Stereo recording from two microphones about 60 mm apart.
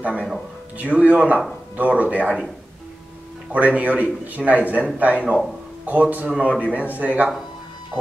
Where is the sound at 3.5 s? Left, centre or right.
Right.